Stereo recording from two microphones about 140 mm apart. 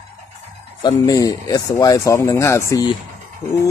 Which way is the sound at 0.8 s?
25° left (ahead or behind).